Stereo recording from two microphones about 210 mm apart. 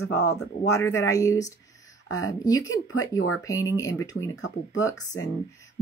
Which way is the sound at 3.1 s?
90° left.